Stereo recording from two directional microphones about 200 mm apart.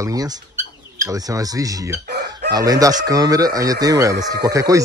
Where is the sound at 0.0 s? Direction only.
20° right (ahead or behind).